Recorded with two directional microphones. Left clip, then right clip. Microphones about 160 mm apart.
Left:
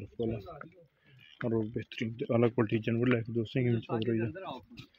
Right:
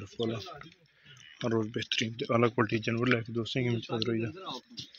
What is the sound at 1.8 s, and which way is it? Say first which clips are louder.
Speech: right 7 dB; 5° left (ahead or behind).